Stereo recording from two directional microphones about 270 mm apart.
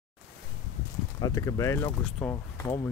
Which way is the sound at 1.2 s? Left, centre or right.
Centre.